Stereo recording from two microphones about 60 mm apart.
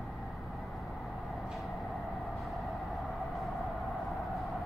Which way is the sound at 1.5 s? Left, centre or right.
Centre.